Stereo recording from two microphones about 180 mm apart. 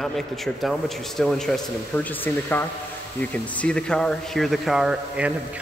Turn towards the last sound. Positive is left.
turn(degrees=-5)  # may be behind; listen again after turning